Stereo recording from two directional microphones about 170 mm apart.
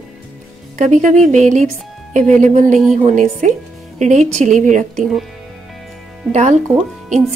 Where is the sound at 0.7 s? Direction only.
45° right (ahead or behind).